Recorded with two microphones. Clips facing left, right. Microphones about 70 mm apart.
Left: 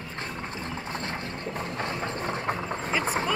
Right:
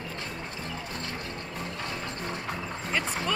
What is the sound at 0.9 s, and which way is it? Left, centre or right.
Train, left.